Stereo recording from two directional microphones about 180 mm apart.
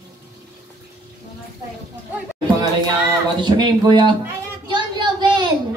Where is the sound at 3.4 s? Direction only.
25° right (ahead or behind).